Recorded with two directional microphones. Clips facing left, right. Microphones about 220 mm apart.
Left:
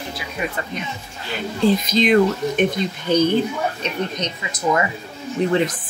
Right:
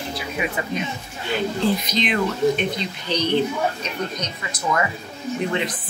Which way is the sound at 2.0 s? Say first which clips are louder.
Left 3 dB; 45° left (ahead or behind).